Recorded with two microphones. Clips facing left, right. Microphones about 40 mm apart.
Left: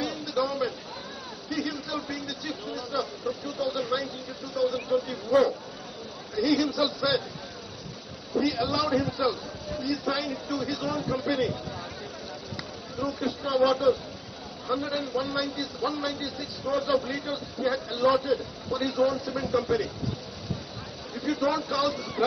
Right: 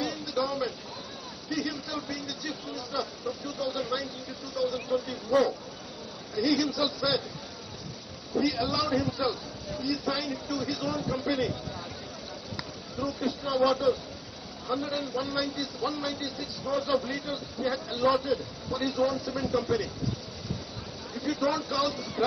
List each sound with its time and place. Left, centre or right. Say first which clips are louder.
0.0 s a sound: left 2 dB; centre
1.5 s speech: left 1 dB; centre
8.5 s speech: left 2 dB; centre
13.2 s speech: left 2 dB; centre
21.2 s speech: left 2 dB; centre